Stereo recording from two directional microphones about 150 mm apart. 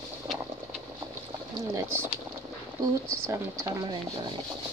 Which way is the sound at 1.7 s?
15° right (ahead or behind).